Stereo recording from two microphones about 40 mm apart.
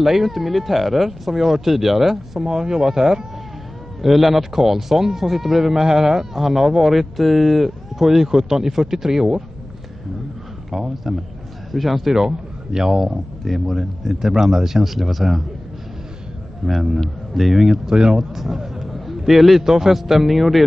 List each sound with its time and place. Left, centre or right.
0.0 s speech: centre
10.7 s speech: centre
13.4 s speech: centre
14.3 s speech: centre
16.6 s speech: centre
17.8 s speech: centre
18.3 s a man's voice: centre